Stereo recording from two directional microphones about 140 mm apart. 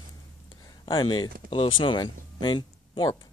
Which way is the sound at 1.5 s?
35° left (ahead or behind).